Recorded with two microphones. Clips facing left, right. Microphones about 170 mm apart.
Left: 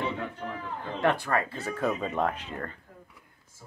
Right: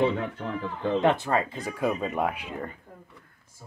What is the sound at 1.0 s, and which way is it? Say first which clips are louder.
Speech: even; 20° right (ahead or behind).